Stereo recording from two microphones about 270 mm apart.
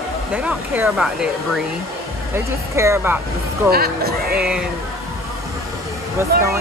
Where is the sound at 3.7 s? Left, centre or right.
Right.